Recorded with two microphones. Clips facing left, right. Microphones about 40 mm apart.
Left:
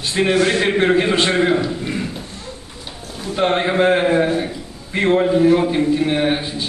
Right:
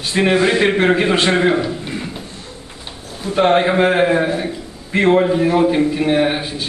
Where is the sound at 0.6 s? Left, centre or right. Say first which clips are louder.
Right 1 dB; centre.